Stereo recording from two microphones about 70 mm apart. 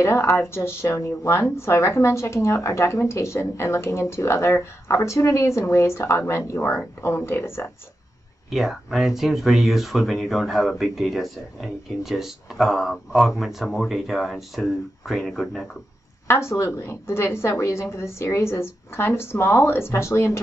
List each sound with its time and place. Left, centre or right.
0.0 s speech: left
8.5 s speech: centre
16.3 s speech: left